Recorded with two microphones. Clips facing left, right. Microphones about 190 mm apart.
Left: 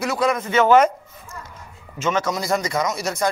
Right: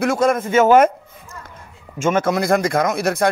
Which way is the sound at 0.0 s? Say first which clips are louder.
Right 4 dB; 50° right (ahead or behind).